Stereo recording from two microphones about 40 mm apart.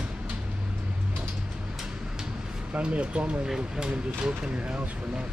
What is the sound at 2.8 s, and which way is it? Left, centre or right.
Speech, right.